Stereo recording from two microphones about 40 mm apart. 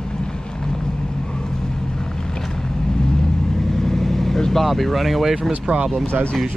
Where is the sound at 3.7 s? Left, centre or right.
Centre.